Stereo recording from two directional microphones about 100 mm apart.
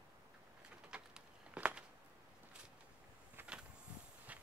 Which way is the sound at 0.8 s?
10° right (ahead or behind).